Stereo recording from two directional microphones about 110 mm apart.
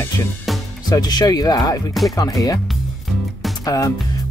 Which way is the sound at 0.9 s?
40° left (ahead or behind).